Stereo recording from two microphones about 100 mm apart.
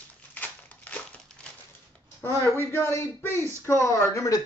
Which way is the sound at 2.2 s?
25° left (ahead or behind).